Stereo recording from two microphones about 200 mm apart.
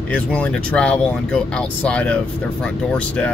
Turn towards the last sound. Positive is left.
turn(degrees=5)  # may be behind; listen again after turning